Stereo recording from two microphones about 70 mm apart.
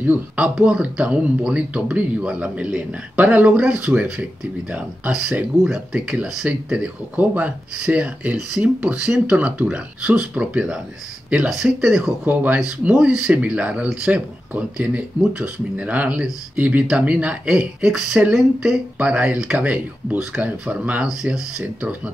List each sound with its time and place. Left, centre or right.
0.4 s speech: centre
12.3 s speech: right